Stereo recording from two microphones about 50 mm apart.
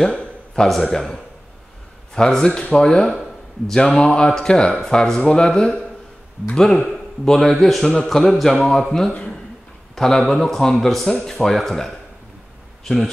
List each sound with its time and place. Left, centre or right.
0.0 s speech: centre
2.1 s speech: centre
7.8 s speech: centre
8.2 s a man's voice: centre